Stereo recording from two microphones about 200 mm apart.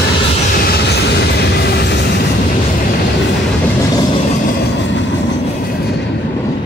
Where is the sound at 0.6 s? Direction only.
55° left (ahead or behind).